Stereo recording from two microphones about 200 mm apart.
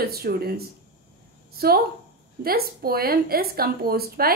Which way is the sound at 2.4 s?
50° right (ahead or behind).